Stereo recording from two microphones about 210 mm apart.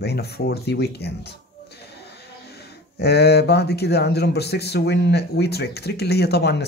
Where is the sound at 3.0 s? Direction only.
50° left (ahead or behind).